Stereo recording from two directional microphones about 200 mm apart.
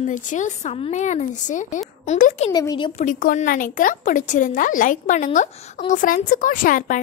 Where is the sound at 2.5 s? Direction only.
20° left (ahead or behind).